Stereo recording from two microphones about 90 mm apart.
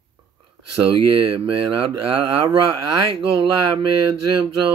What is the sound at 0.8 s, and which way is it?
Speech, 80° right.